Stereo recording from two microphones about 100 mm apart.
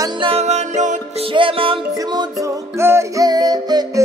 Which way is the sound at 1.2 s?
60° right (ahead or behind).